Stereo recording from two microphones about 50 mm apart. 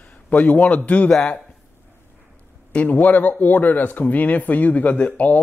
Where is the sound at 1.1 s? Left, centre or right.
Centre.